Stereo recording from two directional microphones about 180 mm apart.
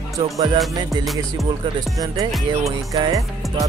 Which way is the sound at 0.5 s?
Centre (ahead or behind).